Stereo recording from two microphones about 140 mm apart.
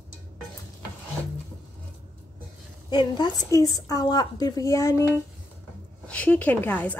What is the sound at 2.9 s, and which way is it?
A woman's voice, 35° left (ahead or behind).